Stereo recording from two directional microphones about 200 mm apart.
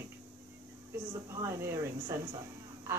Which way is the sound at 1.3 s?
15° right (ahead or behind).